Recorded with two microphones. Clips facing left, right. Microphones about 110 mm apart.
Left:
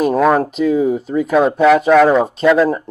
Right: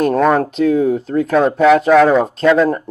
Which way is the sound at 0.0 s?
5° left (ahead or behind).